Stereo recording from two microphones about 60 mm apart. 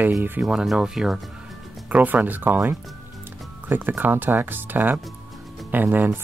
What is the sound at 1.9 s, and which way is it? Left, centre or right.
Speech, right.